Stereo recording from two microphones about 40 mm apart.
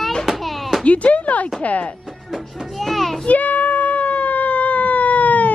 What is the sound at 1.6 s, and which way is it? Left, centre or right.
Speech, left.